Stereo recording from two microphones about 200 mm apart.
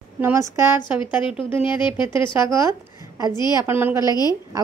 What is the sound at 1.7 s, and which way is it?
Speech, 25° left (ahead or behind).